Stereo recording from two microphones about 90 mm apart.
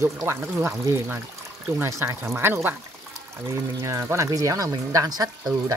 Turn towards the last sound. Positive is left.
turn(degrees=-45)  # may be behind; listen again after turning